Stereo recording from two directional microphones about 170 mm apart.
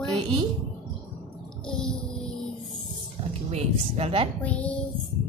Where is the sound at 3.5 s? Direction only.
35° right (ahead or behind).